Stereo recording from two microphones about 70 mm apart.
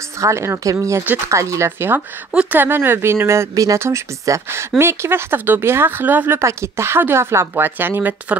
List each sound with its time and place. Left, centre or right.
0.2 s speech: right
2.0 s speech: centre
2.6 s speech: right
3.5 s speech: right
3.8 s speech: right